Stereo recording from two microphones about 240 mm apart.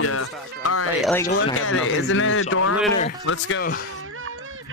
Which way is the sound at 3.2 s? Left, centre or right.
Left.